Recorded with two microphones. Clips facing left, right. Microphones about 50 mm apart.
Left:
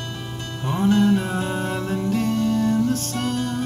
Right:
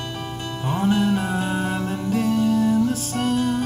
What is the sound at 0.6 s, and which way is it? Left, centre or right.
Music, centre.